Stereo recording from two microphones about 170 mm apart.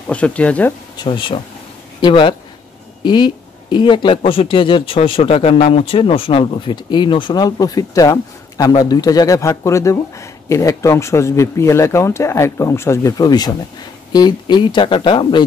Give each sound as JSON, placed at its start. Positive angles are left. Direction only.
{"t": 0.1, "sound": "speech", "side_deg": 5}
{"t": 0.9, "sound": "speech", "side_deg": 30}